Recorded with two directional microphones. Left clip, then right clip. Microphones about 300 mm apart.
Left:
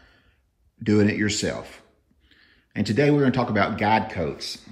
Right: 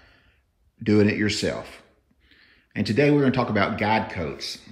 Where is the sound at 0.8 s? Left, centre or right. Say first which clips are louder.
Right 1 dB; centre.